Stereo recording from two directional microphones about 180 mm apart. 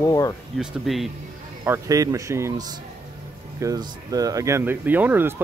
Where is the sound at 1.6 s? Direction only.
15° right (ahead or behind).